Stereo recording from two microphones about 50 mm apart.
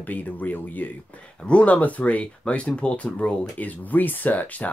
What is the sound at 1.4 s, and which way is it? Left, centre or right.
Speech, left.